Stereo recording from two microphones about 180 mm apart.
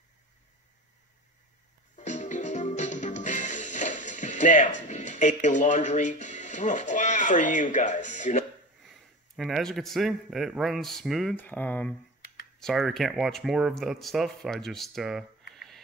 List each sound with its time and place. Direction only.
2.0 s music: 40° left (ahead or behind)
4.8 s speech: 40° left (ahead or behind)
9.4 s speech: centre (ahead or behind)